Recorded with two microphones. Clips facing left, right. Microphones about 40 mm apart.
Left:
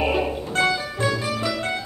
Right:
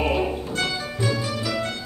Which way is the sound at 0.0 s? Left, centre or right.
Centre.